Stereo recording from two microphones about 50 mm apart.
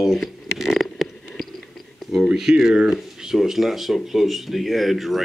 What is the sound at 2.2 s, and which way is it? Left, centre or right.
Speech, centre.